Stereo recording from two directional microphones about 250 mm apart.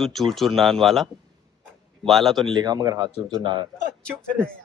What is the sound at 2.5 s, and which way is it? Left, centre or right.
Speech, centre.